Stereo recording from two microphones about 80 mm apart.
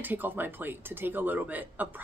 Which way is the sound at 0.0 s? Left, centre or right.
Right.